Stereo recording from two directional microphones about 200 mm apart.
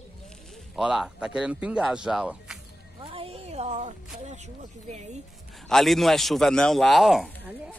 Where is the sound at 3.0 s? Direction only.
25° right (ahead or behind).